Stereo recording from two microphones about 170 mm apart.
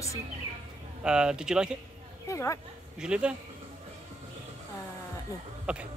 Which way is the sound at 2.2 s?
20° left (ahead or behind).